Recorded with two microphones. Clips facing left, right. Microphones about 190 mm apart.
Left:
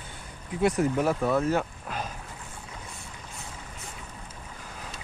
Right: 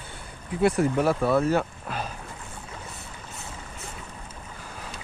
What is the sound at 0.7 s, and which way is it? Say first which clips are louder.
Speech: right 2 dB; 10° right (ahead or behind).